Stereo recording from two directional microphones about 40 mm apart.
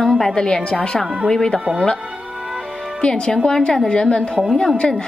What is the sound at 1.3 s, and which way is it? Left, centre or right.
Speech, centre.